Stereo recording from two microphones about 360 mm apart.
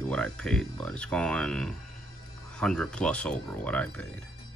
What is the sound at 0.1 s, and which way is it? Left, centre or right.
Speech, centre.